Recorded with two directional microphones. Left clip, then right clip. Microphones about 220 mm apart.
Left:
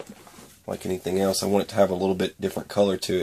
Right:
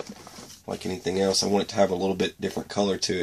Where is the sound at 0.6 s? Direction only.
25° left (ahead or behind).